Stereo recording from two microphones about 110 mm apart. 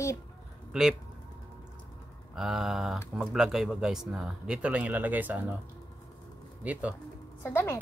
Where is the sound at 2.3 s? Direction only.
5° right (ahead or behind).